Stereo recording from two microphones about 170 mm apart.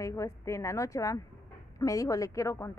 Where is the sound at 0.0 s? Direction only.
20° left (ahead or behind).